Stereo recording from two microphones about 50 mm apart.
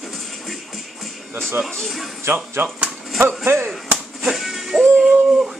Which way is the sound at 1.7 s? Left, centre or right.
Centre.